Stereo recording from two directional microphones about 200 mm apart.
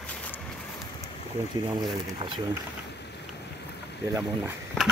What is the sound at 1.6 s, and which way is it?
Speech, 20° right (ahead or behind).